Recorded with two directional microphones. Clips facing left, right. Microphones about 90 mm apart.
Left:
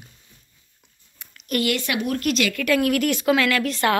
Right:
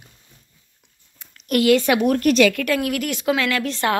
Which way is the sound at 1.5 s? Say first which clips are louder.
Right 5 dB; 60° right (ahead or behind).